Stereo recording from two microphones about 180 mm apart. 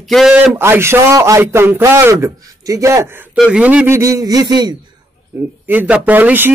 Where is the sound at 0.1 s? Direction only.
Centre (ahead or behind).